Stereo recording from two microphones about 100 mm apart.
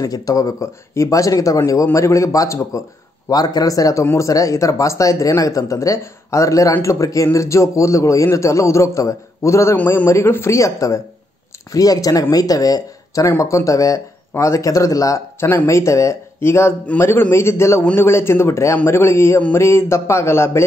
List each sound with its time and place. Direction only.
0.0 s speech: 35° left (ahead or behind)